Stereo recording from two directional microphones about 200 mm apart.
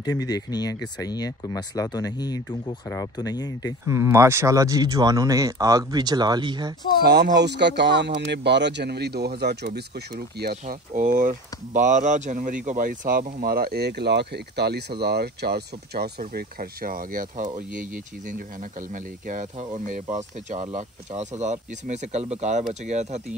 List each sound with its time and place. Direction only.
0.0 s speech: 20° left (ahead or behind)
3.8 s speech: 15° right (ahead or behind)
7.0 s speech: 55° right (ahead or behind)
19.9 s speech: 35° right (ahead or behind)